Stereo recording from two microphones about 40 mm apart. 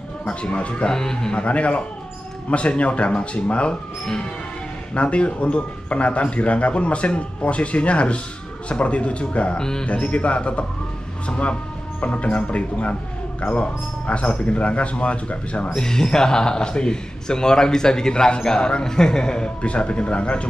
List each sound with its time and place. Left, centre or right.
0.3 s a man's voice: left
0.8 s speech: centre
1.3 s speech: left
4.9 s speech: left
9.6 s speech: centre
9.8 s speech: left
15.8 s a man's voice: centre